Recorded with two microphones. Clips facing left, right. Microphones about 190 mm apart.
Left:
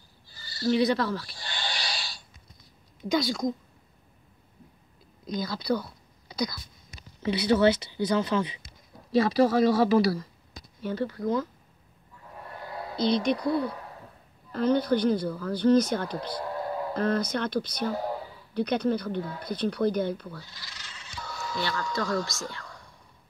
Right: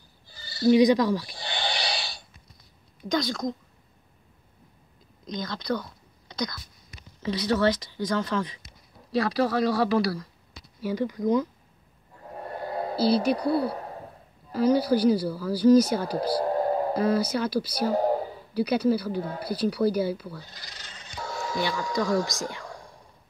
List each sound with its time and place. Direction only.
0.6 s speech: 15° right (ahead or behind)
3.1 s speech: 5° left (ahead or behind)
5.4 s speech: 5° left (ahead or behind)
10.8 s speech: 10° right (ahead or behind)
12.2 s a sound: 40° right (ahead or behind)
12.9 s speech: 35° right (ahead or behind)
14.5 s speech: 10° right (ahead or behind)
16.1 s a sound: 35° right (ahead or behind)
16.9 s speech: 10° right (ahead or behind)
17.7 s a sound: 40° right (ahead or behind)
18.5 s speech: 5° right (ahead or behind)
20.6 s bleat: 35° right (ahead or behind)
21.2 s a sound: 50° right (ahead or behind)
21.9 s speech: 15° right (ahead or behind)